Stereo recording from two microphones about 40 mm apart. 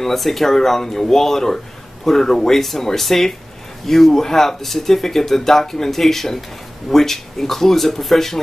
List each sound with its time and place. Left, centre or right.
0.0 s speech: centre